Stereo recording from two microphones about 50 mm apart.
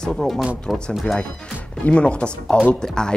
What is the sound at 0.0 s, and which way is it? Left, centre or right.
Speech, centre.